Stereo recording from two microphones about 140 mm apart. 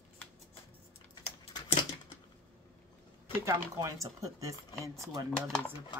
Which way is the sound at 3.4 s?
25° right (ahead or behind).